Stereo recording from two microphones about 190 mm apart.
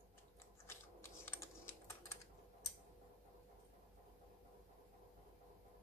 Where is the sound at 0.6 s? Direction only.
10° left (ahead or behind).